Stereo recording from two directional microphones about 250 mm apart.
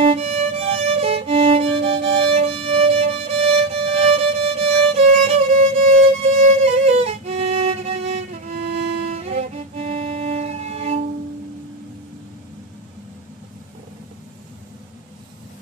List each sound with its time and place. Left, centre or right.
0.0 s violin: right